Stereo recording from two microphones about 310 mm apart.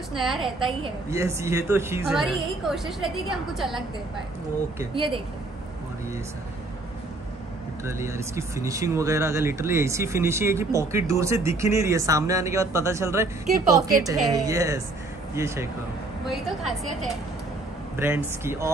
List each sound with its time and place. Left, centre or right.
0.2 s a woman's voice: centre
0.6 s a woman's voice: centre
4.7 s speech: centre
7.8 s speech: centre
17.9 s speech: centre